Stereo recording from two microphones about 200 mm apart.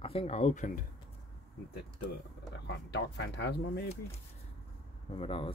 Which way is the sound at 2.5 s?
60° left (ahead or behind).